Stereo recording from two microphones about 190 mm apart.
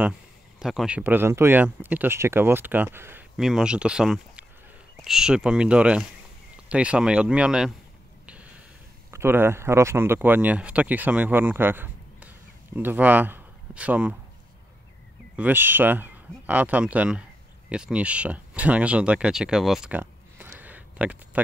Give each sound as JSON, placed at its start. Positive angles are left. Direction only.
{"t": 0.6, "sound": "speech", "side_deg": -5}
{"t": 3.3, "sound": "speech", "side_deg": 0}
{"t": 8.3, "sound": "snort", "side_deg": -5}
{"t": 9.1, "sound": "speech", "side_deg": -10}
{"t": 15.3, "sound": "speech", "side_deg": -10}